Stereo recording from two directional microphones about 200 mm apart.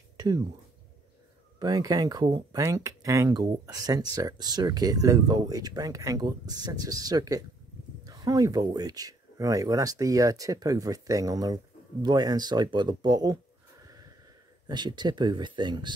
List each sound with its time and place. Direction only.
1.6 s speech: 20° right (ahead or behind)
14.7 s speech: 20° right (ahead or behind)